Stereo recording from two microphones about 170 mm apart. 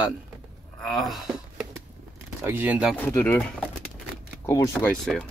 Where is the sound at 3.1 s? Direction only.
15° left (ahead or behind).